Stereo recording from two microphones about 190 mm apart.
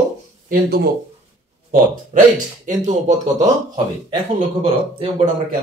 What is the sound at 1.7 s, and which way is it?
Speech, 45° right (ahead or behind).